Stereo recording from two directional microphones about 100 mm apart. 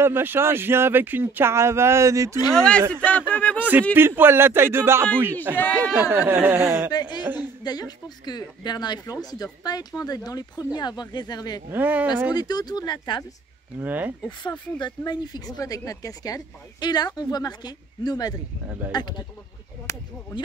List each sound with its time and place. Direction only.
0.0 s speech: 20° right (ahead or behind)
2.5 s speech: 10° left (ahead or behind)
3.9 s speech: 20° right (ahead or behind)
6.9 s speech: 45° left (ahead or behind)
11.7 s speech: 15° right (ahead or behind)
12.4 s speech: 40° left (ahead or behind)
13.7 s speech: 20° right (ahead or behind)
14.4 s speech: 50° left (ahead or behind)
19.9 s speech: 30° left (ahead or behind)